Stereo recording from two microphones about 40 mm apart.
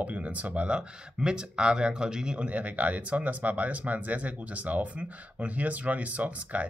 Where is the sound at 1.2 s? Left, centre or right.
Right.